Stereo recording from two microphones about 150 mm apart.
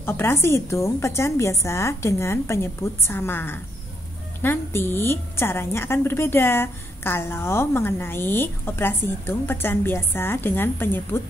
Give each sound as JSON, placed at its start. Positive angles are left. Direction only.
{"t": 0.0, "sound": "a woman's voice", "side_deg": 15}